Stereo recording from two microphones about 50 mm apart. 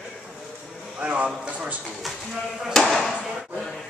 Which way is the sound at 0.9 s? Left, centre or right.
Right.